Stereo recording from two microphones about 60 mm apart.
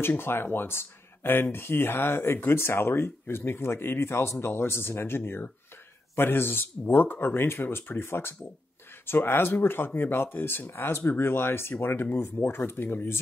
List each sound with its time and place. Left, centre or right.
0.0 s speech: left